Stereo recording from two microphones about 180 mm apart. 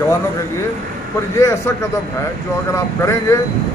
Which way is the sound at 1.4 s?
15° left (ahead or behind).